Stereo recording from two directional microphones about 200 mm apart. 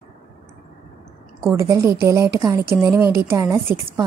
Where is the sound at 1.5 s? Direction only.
15° right (ahead or behind).